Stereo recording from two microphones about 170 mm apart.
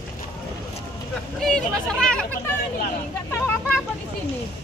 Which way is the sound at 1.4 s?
5° left (ahead or behind).